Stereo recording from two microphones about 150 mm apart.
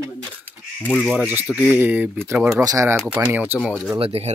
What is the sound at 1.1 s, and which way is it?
Speech, 10° right (ahead or behind).